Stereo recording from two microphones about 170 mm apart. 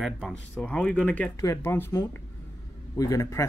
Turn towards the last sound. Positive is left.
turn(degrees=15)  # may be behind; listen again after turning